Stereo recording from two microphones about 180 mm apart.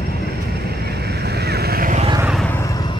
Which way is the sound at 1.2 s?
65° right (ahead or behind).